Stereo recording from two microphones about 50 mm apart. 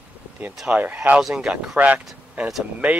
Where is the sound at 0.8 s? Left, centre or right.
Right.